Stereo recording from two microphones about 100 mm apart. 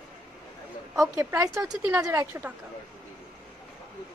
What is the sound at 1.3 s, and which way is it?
A woman's voice, 35° right (ahead or behind).